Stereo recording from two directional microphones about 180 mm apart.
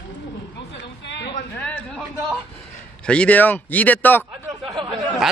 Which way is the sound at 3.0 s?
5° left (ahead or behind).